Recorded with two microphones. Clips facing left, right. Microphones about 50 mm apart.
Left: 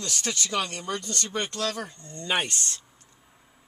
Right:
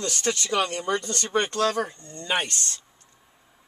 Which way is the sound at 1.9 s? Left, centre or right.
Centre.